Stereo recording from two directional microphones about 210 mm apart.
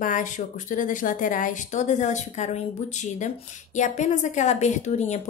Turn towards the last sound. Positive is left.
turn(degrees=35)  # may be behind; listen again after turning